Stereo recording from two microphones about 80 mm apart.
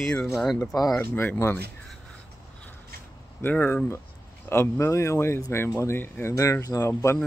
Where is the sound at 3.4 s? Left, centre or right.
Left.